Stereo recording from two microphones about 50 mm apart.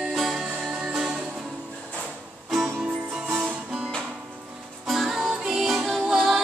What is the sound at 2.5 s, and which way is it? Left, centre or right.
Music, centre.